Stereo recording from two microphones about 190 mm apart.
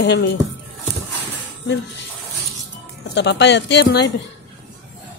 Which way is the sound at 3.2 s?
65° left (ahead or behind).